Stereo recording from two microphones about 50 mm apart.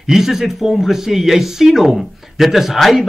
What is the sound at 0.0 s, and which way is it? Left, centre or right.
Speech, centre.